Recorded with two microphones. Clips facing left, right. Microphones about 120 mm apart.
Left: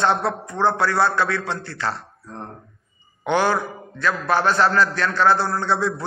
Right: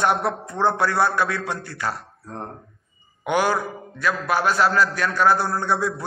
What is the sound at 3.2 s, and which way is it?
A man's voice, 10° right (ahead or behind).